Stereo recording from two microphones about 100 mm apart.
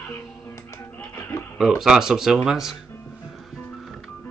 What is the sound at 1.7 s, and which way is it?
A man's voice, 5° right (ahead or behind).